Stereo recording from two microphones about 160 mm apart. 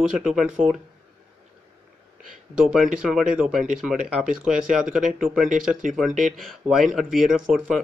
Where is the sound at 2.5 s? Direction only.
Centre (ahead or behind).